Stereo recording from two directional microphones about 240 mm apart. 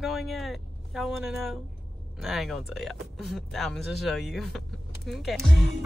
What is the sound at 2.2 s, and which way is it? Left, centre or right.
Speech, centre.